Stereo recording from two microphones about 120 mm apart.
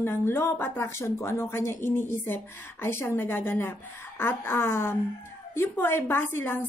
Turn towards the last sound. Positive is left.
turn(degrees=15)  # may be behind; listen again after turning